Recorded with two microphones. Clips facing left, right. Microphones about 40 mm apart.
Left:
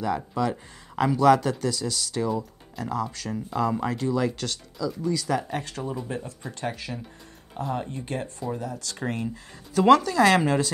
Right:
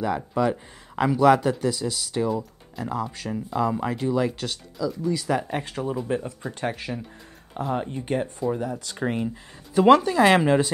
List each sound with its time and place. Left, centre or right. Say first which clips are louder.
0.0 s speech: right 2 dB; centre